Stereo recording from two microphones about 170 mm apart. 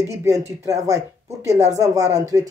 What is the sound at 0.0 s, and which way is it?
Speech, 20° right (ahead or behind).